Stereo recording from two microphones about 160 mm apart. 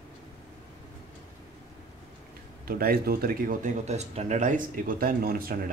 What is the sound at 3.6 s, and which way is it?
Speech, 45° right (ahead or behind).